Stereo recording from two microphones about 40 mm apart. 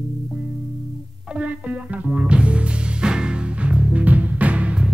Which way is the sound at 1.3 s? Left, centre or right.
Right.